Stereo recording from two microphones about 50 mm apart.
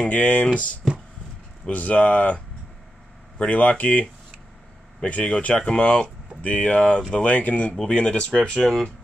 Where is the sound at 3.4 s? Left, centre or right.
Left.